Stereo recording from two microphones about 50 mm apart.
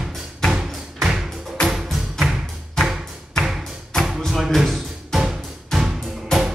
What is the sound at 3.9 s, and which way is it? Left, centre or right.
Music, centre.